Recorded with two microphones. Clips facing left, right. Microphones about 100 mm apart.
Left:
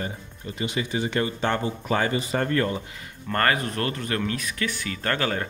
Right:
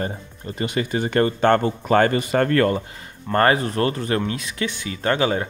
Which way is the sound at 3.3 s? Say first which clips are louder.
Right 6 dB; 30° right (ahead or behind).